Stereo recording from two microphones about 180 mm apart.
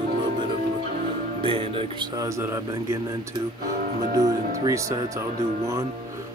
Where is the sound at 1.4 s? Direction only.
30° right (ahead or behind); by 2.9 s 15° right (ahead or behind).